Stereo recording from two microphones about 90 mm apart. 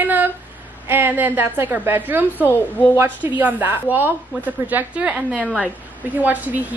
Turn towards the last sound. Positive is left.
turn(degrees=-20)  # may be behind; listen again after turning